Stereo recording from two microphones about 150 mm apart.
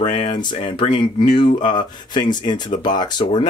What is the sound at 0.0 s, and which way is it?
Speech, 40° left (ahead or behind).